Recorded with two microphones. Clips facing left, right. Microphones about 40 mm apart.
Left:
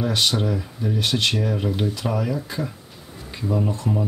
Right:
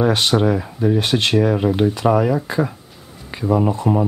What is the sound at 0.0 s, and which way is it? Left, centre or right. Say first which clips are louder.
Speech: right 6 dB; right.